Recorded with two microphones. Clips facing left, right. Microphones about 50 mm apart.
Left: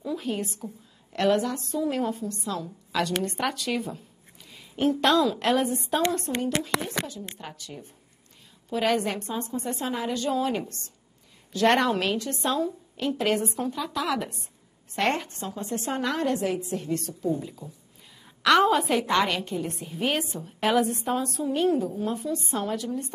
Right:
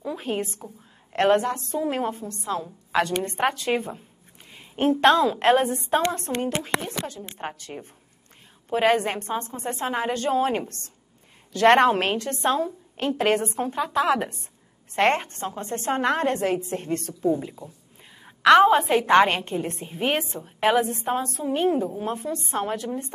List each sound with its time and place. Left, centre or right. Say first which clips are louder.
0.0 s a woman's voice: right 2 dB; right
20.0 s a woman's voice: right 2 dB; right
22.0 s a woman's voice: even; right